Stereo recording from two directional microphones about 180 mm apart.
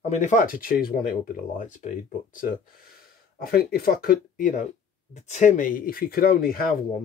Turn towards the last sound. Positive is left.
turn(degrees=55)  # may be behind; listen again after turning